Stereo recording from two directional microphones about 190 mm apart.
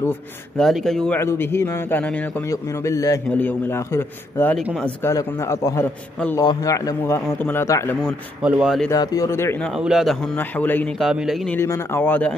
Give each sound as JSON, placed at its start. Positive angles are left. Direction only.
{"t": 0.6, "sound": "a man's voice", "side_deg": 0}
{"t": 8.4, "sound": "a man's voice", "side_deg": -5}
{"t": 8.9, "sound": "a man's voice", "side_deg": 20}
{"t": 9.8, "sound": "a man's voice", "side_deg": -5}
{"t": 11.1, "sound": "a man's voice", "side_deg": 0}
{"t": 11.5, "sound": "a man's voice", "side_deg": 15}